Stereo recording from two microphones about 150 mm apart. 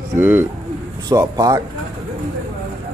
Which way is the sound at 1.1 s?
25° right (ahead or behind).